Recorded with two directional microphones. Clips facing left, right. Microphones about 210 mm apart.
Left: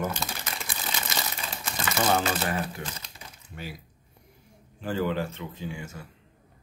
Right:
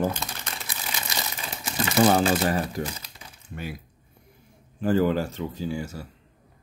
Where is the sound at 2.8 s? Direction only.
35° right (ahead or behind).